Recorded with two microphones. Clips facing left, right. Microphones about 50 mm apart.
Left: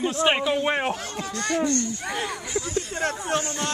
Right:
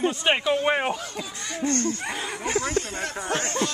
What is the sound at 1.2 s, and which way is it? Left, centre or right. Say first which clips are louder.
Speech: left 8 dB; left.